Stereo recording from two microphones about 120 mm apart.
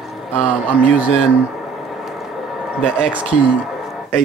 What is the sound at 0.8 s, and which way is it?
Speech, 10° right (ahead or behind).